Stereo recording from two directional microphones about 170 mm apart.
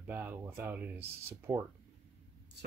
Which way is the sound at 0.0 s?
10° right (ahead or behind).